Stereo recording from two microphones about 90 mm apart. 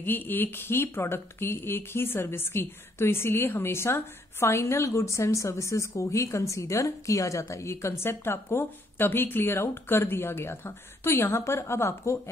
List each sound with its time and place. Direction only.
0.0 s speech: 20° left (ahead or behind)